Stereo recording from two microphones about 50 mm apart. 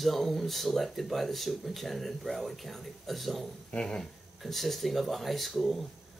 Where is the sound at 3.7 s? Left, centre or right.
Centre.